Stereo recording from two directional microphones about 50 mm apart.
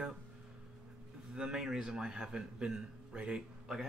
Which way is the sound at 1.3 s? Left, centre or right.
Centre.